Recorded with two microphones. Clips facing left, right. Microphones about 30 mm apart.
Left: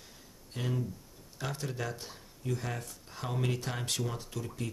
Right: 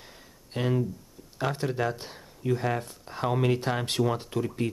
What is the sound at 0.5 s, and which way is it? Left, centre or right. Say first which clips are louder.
Speech: right 8 dB; right.